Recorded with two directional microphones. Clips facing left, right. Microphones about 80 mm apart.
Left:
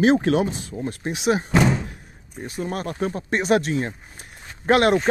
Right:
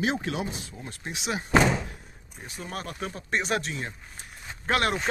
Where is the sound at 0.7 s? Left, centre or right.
Left.